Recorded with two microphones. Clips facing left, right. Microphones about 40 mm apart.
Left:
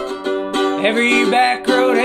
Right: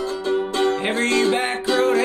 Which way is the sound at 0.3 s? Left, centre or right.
Left.